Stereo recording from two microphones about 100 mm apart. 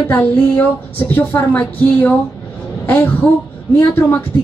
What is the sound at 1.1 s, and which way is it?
A woman's voice, 20° left (ahead or behind).